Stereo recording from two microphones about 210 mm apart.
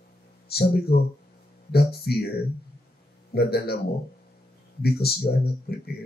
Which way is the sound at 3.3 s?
50° left (ahead or behind).